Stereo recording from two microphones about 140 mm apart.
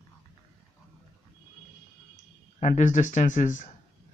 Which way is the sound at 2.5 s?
60° left (ahead or behind).